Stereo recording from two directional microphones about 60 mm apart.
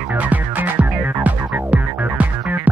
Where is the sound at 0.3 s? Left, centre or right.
Right.